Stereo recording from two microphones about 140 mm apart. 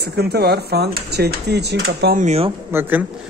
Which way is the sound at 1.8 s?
90° right.